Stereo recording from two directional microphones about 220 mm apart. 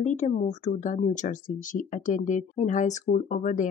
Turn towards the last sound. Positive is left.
turn(degrees=35)  # may be behind; listen again after turning